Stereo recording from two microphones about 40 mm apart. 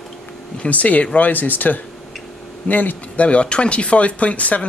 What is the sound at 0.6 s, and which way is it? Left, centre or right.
A man's voice, left.